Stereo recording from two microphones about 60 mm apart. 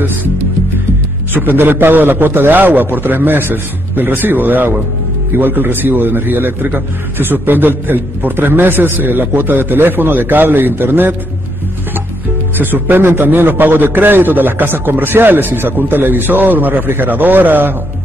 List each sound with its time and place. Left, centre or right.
1.3 s a man's voice: right
12.5 s a man's voice: right